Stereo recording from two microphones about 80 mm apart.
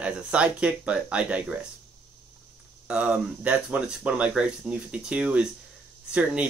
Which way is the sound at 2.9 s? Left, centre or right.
Centre.